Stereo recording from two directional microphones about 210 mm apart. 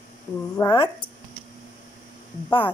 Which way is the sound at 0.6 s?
20° left (ahead or behind).